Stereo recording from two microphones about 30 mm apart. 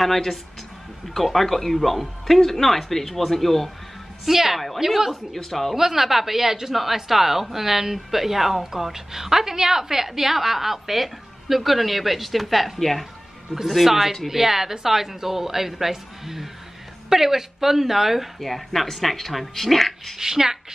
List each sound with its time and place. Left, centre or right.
0.0 s speech: centre
4.3 s a woman's voice: centre
5.3 s speech: centre
5.8 s a woman's voice: centre
18.4 s speech: centre
20.2 s a woman's voice: centre